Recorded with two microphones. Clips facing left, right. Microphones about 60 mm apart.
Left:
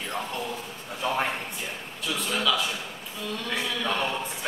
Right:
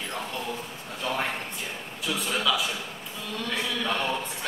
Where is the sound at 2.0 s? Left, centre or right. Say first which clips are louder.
Even; centre.